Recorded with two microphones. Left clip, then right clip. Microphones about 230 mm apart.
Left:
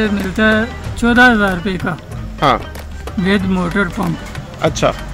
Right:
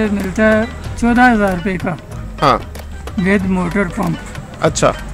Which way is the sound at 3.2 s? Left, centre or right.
Centre.